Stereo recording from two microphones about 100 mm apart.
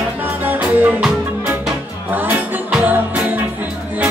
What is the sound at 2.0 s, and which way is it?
Music, 20° right (ahead or behind).